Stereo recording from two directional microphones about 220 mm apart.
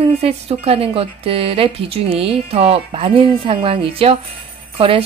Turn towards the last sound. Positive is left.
turn(degrees=-25)  # may be behind; listen again after turning